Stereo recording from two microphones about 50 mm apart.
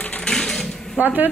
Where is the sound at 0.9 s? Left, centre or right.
Right.